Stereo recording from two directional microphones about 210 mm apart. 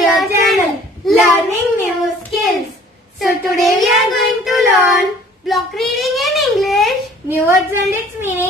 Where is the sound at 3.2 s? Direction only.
Centre (ahead or behind).